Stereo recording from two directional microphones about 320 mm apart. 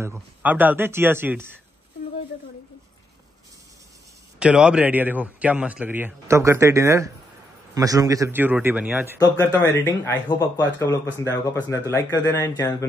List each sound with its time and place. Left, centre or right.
0.0 s speech: centre
4.4 s a man's voice: centre
9.2 s speech: centre